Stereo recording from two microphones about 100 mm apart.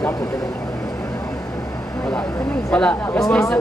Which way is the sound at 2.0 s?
10° left (ahead or behind).